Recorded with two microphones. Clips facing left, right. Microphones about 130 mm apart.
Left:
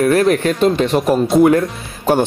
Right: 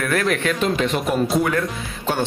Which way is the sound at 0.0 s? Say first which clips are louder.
Left 8 dB; 35° left (ahead or behind).